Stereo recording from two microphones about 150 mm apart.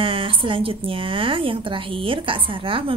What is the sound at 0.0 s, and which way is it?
Speech, 35° right (ahead or behind).